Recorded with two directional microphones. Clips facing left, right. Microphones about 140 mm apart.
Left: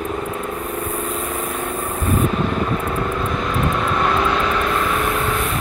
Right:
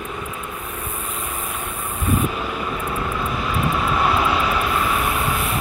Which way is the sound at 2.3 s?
5° right (ahead or behind).